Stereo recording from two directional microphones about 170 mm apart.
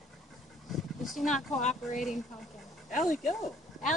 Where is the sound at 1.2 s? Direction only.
45° left (ahead or behind).